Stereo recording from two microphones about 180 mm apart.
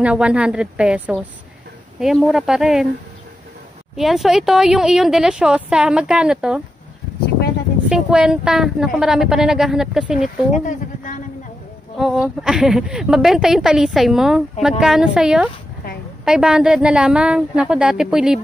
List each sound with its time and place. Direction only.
0.0 s a woman's voice: 5° right (ahead or behind)
3.9 s a woman's voice: centre (ahead or behind)
7.9 s a woman's voice: 5° right (ahead or behind)
10.6 s a sound: 50° left (ahead or behind)
12.0 s a woman's voice: 5° right (ahead or behind)